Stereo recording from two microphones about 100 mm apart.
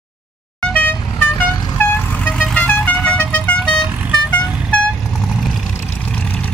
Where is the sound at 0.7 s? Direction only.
15° left (ahead or behind).